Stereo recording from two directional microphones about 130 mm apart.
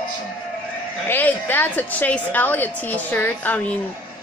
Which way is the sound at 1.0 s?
15° left (ahead or behind).